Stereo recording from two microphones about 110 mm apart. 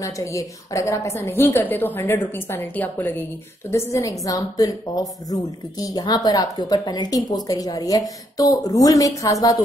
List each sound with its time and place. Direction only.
0.0 s a woman's voice: 30° left (ahead or behind)
3.7 s a woman's voice: 30° left (ahead or behind)